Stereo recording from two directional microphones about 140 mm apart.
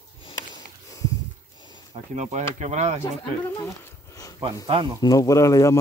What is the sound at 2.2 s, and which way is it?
Speech, 55° right (ahead or behind).